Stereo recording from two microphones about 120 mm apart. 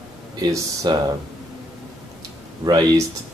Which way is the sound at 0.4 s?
30° right (ahead or behind).